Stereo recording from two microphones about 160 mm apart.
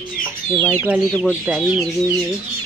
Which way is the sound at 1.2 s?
5° right (ahead or behind).